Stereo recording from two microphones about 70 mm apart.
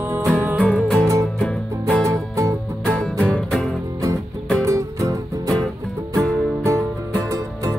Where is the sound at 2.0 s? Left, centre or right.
Right.